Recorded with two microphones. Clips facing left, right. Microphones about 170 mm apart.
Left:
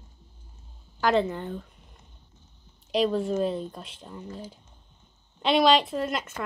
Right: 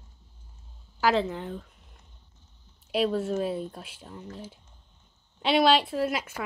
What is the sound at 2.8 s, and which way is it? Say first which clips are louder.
Speech: left 2 dB; 5° right (ahead or behind).